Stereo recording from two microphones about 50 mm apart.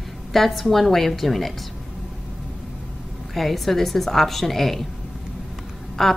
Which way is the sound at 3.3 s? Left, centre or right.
Centre.